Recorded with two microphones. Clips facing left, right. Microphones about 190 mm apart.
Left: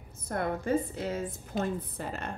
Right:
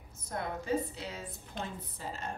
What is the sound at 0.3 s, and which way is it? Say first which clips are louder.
A woman's voice: left 5 dB; 55° left (ahead or behind).